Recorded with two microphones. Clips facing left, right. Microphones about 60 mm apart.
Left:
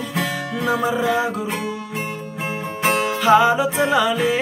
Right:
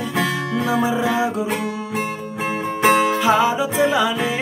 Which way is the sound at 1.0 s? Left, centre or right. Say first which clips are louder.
Even; right.